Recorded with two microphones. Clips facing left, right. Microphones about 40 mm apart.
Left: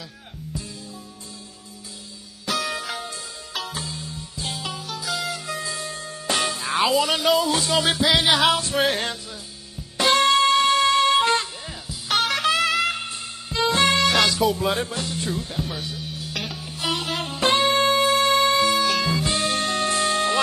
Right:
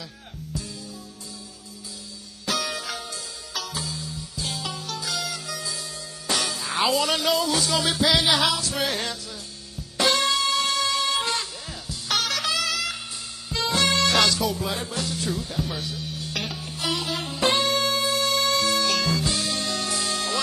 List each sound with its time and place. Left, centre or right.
2.4 s music: centre
3.5 s music: left
4.5 s music: centre
5.5 s music: left
6.8 s a man's voice: centre
7.3 s music: centre
7.6 s music: left
13.9 s music: centre
14.6 s music: left
15.0 s speech: left
15.7 s music: centre
16.9 s music: left
18.8 s music: centre
19.2 s music: left